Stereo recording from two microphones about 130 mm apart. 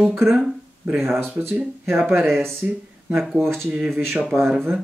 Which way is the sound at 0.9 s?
20° right (ahead or behind).